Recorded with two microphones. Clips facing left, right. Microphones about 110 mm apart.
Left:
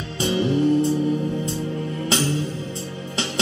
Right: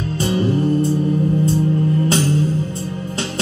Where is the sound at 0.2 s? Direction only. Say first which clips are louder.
Right 1 dB; 40° right (ahead or behind).